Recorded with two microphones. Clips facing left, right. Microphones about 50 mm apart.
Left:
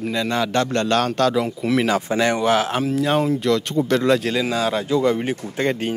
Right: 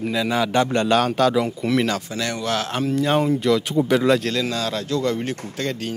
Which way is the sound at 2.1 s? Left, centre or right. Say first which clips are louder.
Left 7 dB; left.